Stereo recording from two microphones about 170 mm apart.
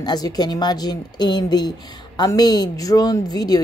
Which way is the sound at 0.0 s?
25° left (ahead or behind).